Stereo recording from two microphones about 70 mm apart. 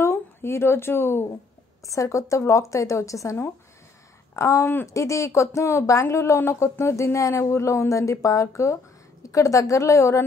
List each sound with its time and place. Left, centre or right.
0.0 s a woman's voice: left
1.9 s speech: left
4.4 s speech: left